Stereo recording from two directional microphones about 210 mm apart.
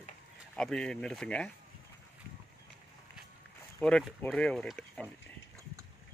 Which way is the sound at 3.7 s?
5° left (ahead or behind).